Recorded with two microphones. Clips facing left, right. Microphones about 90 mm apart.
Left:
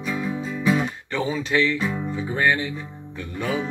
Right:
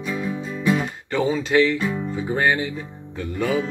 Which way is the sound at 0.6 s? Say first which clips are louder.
Even; 5° left (ahead or behind).